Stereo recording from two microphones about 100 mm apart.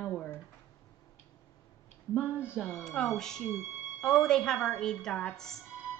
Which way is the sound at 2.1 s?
20° left (ahead or behind).